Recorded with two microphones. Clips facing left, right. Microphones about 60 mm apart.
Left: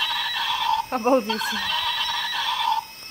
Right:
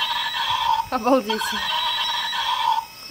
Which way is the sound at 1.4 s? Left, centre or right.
Right.